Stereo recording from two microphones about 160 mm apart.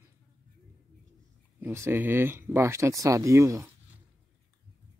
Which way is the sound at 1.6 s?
15° right (ahead or behind).